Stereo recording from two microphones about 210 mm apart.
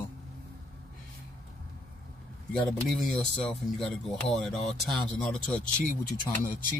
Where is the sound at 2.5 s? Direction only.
Centre (ahead or behind).